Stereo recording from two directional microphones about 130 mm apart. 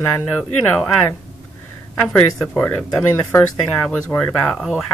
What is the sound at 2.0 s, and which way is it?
Speech, 5° left (ahead or behind).